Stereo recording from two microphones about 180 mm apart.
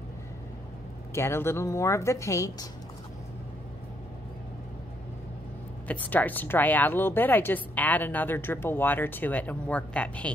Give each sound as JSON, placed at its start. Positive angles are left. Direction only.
{"t": 1.1, "sound": "a woman's voice", "side_deg": 15}
{"t": 5.9, "sound": "a woman's voice", "side_deg": 10}